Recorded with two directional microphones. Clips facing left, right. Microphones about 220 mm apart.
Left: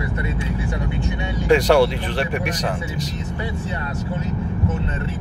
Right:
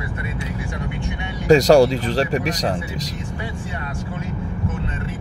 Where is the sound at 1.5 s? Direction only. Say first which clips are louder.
Right 3 dB; 40° right (ahead or behind).